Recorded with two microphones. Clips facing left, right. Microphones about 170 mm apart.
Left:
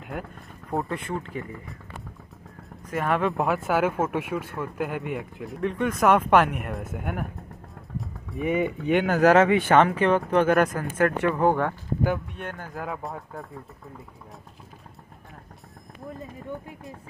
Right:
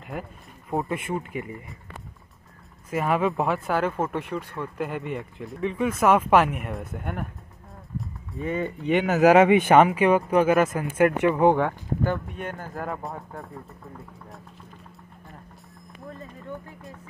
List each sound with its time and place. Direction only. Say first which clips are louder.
0.0 s speech: even; centre (ahead or behind)
0.8 s speech: right 2 dB; 15° right (ahead or behind)
2.9 s speech: right 1 dB; 5° right (ahead or behind)
8.4 s speech: left 3 dB; 15° left (ahead or behind)
8.8 s speech: right 2 dB; centre (ahead or behind)
10.8 s speech: right 3 dB; 15° right (ahead or behind)
12.4 s speech: right 2 dB; 5° right (ahead or behind)